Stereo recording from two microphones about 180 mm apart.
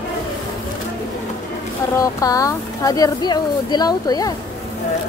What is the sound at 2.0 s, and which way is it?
Speech, 20° left (ahead or behind).